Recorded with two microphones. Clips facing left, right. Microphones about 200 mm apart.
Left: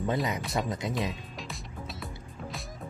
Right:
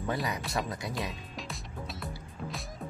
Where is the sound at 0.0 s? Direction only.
20° left (ahead or behind).